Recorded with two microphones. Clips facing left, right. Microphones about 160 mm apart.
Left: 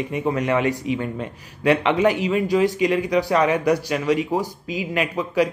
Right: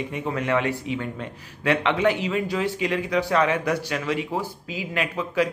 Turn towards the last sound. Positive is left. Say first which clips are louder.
# left 3 dB
turn(degrees=15)  # may be behind; listen again after turning